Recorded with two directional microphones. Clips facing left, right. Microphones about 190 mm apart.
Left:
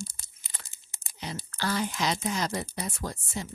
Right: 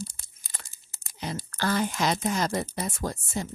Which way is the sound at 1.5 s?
50° right (ahead or behind).